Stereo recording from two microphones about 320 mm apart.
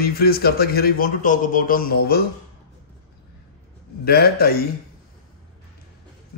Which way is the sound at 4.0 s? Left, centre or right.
Left.